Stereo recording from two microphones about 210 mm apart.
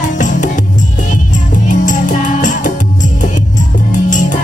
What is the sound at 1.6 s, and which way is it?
Music, 35° left (ahead or behind).